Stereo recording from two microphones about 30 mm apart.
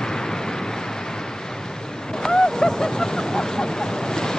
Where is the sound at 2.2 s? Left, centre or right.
Left.